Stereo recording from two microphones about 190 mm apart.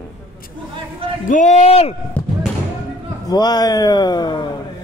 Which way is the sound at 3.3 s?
20° left (ahead or behind).